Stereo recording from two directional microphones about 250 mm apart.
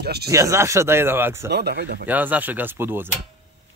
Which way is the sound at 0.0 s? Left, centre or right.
Right.